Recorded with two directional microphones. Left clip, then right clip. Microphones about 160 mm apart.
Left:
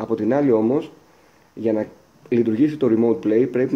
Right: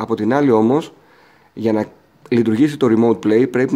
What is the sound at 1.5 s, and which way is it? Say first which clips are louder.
A man's voice: right 3 dB; 60° right (ahead or behind).